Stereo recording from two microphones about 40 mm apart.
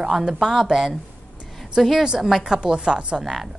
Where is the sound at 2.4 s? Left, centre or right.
Right.